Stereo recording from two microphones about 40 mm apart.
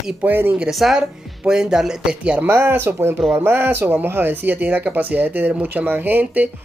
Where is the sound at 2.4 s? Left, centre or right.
Right.